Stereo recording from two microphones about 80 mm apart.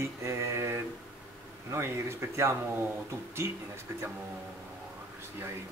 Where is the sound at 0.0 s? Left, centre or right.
Right.